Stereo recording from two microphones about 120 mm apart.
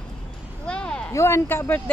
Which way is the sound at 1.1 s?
20° left (ahead or behind).